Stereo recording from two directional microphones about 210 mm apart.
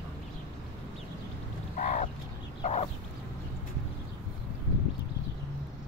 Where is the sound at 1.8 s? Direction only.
40° left (ahead or behind).